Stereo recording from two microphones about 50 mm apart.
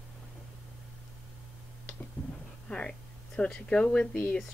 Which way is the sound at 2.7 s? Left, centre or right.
Centre.